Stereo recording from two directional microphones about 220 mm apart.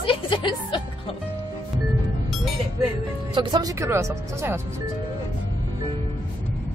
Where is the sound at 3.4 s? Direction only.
20° right (ahead or behind).